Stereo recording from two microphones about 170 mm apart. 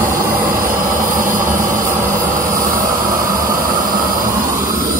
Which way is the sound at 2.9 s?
20° right (ahead or behind).